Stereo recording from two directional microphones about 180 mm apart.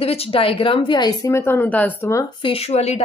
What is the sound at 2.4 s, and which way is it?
Speech, 30° left (ahead or behind).